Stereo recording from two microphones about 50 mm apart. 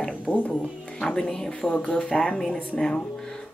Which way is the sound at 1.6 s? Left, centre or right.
Left.